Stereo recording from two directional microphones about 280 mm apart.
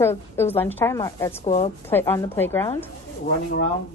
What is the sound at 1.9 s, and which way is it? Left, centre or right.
Speech, centre.